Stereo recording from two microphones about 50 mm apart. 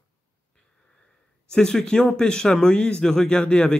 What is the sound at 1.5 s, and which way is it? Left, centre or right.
A man's voice, centre.